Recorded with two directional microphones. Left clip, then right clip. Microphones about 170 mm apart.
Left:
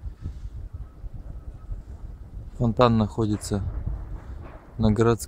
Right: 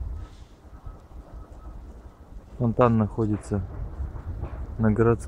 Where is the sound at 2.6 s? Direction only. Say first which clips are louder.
Left 1 dB; 30° left (ahead or behind).